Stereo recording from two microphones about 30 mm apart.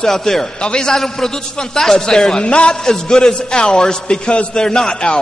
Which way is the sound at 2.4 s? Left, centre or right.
Left.